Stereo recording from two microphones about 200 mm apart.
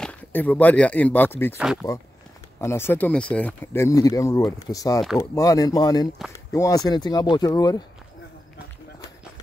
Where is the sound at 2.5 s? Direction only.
15° left (ahead or behind).